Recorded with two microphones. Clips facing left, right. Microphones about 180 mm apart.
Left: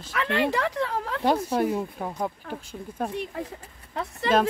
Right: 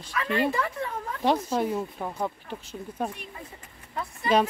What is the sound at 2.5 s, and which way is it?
Speech, 70° left (ahead or behind).